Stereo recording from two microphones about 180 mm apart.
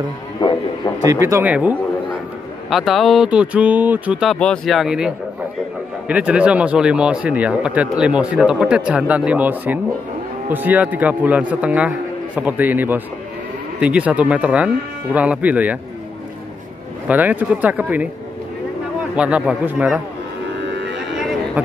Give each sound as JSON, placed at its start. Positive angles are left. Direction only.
{"t": 0.4, "sound": "didgeridoo", "side_deg": 25}
{"t": 1.2, "sound": "speech", "side_deg": -10}
{"t": 17.1, "sound": "speech", "side_deg": -10}
{"t": 19.1, "sound": "speech", "side_deg": -5}
{"t": 20.6, "sound": "a sound", "side_deg": -75}